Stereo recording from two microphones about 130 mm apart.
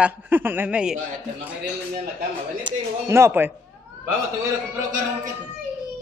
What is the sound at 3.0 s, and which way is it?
Speech, 20° right (ahead or behind).